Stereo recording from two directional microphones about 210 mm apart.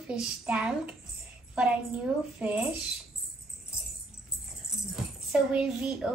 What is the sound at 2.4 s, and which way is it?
Speech, 5° right (ahead or behind).